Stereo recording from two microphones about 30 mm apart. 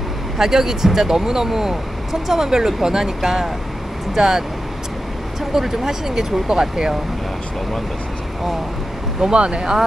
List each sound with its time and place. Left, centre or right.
0.4 s speech: centre
9.3 s speech: right